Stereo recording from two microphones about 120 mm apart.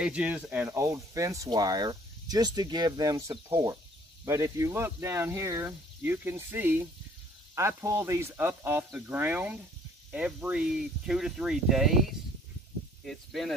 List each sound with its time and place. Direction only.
0.0 s speech: 10° right (ahead or behind)
0.7 s speech: 25° right (ahead or behind); by 12.0 s centre (ahead or behind)
13.0 s speech: centre (ahead or behind)